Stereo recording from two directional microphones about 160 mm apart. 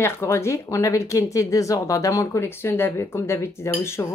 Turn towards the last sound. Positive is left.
turn(degrees=15)  # may be behind; listen again after turning